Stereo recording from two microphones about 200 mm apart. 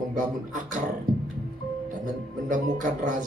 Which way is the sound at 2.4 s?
40° right (ahead or behind).